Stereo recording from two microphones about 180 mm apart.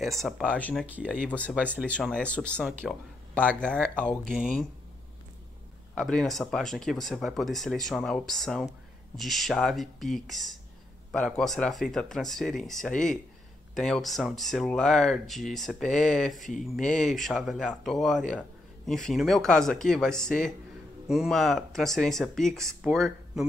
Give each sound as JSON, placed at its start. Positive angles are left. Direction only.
{"t": 0.0, "sound": "speech", "side_deg": 0}
{"t": 1.9, "sound": "speech", "side_deg": 5}
{"t": 5.9, "sound": "speech", "side_deg": 0}